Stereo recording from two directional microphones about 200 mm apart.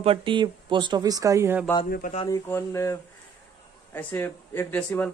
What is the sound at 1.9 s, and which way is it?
Speech, 45° left (ahead or behind).